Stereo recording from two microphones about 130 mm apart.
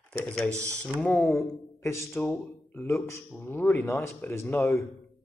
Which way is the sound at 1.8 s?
20° left (ahead or behind).